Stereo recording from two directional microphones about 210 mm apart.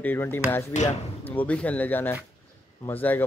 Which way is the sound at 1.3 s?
5° left (ahead or behind).